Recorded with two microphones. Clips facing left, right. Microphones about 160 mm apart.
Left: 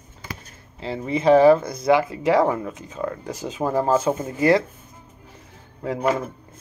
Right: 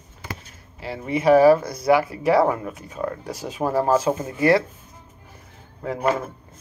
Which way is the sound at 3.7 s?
40° right (ahead or behind).